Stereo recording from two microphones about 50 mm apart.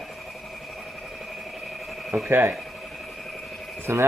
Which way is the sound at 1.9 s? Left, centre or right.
Centre.